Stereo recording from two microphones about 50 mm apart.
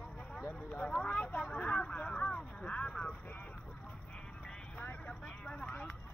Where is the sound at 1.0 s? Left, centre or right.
Left.